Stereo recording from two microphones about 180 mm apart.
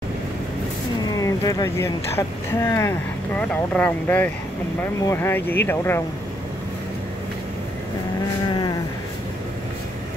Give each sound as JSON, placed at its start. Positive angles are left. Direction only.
{"t": 1.1, "sound": "speech", "side_deg": 20}